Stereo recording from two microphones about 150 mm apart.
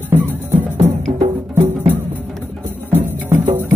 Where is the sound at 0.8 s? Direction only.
45° right (ahead or behind).